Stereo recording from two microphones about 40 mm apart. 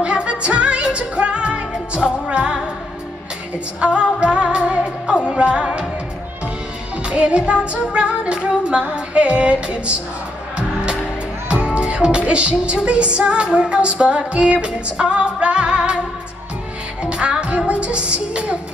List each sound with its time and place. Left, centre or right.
0.0 s music: right
7.0 s music: right
11.4 s music: right
17.0 s music: right
17.6 s a woman's voice: right